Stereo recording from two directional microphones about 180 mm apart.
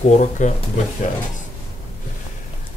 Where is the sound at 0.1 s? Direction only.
40° left (ahead or behind).